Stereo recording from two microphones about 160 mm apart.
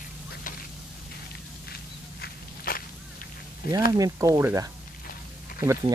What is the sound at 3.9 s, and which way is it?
Speech, 20° right (ahead or behind).